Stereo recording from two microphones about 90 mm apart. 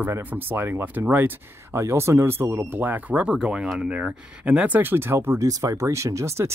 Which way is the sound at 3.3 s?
10° right (ahead or behind).